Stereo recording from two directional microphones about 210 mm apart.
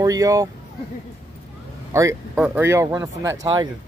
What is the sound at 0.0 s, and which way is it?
Speech, 15° right (ahead or behind).